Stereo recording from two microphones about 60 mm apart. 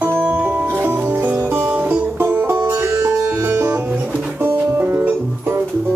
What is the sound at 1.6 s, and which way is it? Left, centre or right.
Music, right.